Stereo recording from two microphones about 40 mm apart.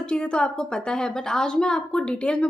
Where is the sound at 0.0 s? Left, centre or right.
Left.